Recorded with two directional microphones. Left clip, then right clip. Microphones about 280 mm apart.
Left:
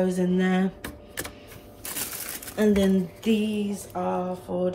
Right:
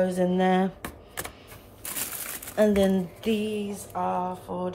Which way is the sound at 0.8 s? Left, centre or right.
Right.